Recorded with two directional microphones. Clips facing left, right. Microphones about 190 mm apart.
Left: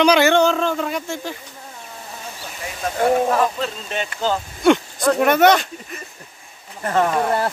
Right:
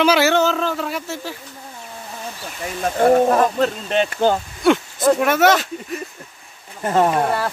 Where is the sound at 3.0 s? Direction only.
45° right (ahead or behind).